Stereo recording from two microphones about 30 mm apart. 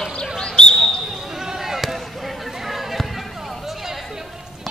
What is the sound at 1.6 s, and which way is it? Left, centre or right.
Basketball bounce, centre.